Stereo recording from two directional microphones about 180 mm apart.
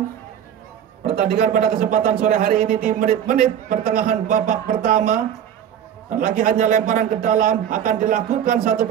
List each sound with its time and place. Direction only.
1.3 s speech: 50° right (ahead or behind)